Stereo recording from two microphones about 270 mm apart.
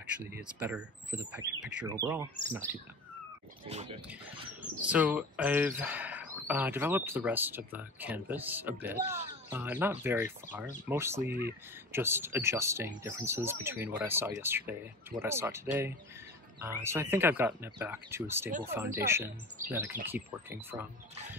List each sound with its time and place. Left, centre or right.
0.0 s speech: centre
3.6 s speech: right
4.8 s speech: centre